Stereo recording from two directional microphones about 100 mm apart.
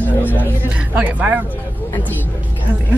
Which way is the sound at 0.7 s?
15° right (ahead or behind).